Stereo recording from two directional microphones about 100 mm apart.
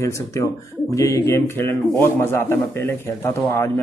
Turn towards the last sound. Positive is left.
turn(degrees=25)  # may be behind; listen again after turning